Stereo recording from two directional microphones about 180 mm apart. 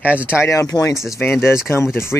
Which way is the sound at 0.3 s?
15° left (ahead or behind).